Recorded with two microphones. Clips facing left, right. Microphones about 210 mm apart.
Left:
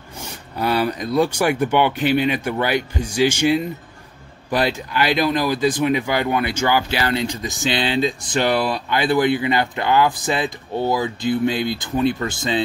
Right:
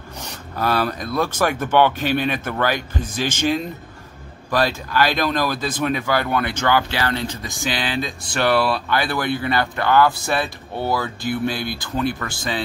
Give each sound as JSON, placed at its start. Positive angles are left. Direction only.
{"t": 0.6, "sound": "speech", "side_deg": 15}